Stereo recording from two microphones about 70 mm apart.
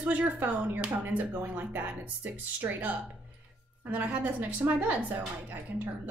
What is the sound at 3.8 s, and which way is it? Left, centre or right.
A woman's voice, right.